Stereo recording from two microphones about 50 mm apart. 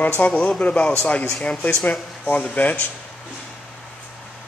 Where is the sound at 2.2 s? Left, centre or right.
Left.